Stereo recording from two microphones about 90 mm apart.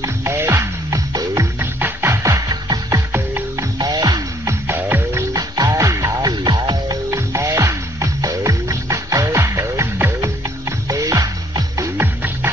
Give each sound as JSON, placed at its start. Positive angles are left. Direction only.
{"t": 0.0, "sound": "music", "side_deg": -30}
{"t": 1.6, "sound": "music", "side_deg": -25}
{"t": 3.1, "sound": "music", "side_deg": -25}
{"t": 3.7, "sound": "music", "side_deg": -45}
{"t": 4.5, "sound": "music", "side_deg": -25}
{"t": 5.3, "sound": "music", "side_deg": -40}
{"t": 6.4, "sound": "music", "side_deg": -55}
{"t": 7.1, "sound": "music", "side_deg": -35}
{"t": 10.9, "sound": "music", "side_deg": -40}
{"t": 12.0, "sound": "music", "side_deg": -20}